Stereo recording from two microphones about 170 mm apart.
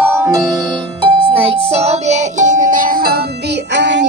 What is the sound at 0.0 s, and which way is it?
Music, 15° right (ahead or behind).